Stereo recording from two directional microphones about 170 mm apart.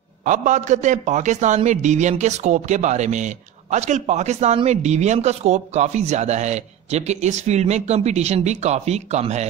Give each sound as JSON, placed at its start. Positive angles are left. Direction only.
{"t": 0.2, "sound": "a man's voice", "side_deg": -50}